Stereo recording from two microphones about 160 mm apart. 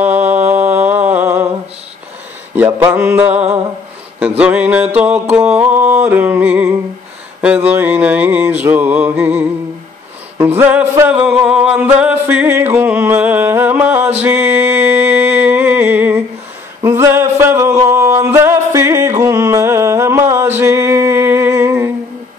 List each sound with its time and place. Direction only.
0.0 s mantra: 10° right (ahead or behind)
2.5 s music: 10° right (ahead or behind)
16.8 s a sound: 15° right (ahead or behind)